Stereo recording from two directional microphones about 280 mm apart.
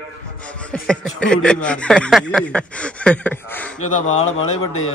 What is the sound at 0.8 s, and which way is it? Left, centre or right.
Speech, centre.